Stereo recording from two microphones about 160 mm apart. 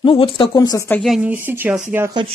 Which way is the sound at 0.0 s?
35° left (ahead or behind).